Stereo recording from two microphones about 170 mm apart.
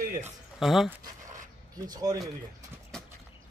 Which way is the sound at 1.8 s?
20° right (ahead or behind).